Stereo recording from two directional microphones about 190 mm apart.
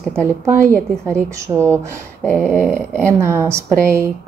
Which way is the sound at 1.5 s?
15° right (ahead or behind).